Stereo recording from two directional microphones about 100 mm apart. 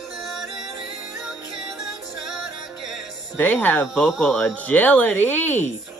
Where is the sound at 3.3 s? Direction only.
20° left (ahead or behind).